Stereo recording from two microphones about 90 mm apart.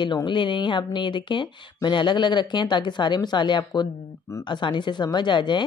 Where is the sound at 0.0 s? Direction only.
55° left (ahead or behind).